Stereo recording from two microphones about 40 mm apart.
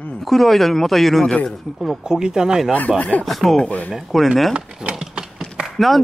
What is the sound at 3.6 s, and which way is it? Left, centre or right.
Speech, left.